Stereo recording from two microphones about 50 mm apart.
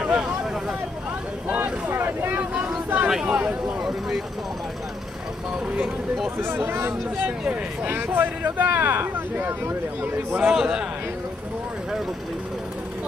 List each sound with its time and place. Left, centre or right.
0.0 s a sound: right
1.5 s boat: right
2.5 s vehicle: right
3.3 s a sound: right
6.3 s speech: right
10.5 s a man's voice: centre